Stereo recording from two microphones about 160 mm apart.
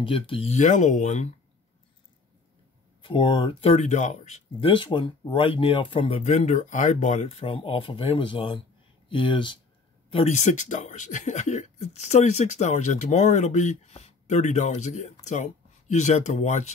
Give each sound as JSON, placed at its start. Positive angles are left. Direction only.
{"t": 0.0, "sound": "speech", "side_deg": 35}
{"t": 3.0, "sound": "speech", "side_deg": 30}
{"t": 10.1, "sound": "speech", "side_deg": 45}